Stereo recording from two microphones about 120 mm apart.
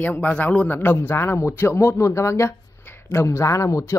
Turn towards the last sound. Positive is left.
turn(degrees=25)  # may be behind; listen again after turning